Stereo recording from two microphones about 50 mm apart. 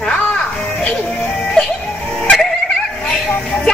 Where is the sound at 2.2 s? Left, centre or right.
Centre.